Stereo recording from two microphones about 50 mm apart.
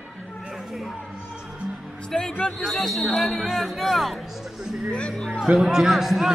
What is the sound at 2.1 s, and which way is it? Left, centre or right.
Speech, centre.